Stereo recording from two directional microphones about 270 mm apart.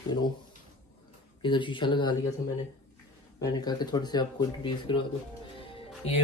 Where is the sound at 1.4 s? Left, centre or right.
Centre.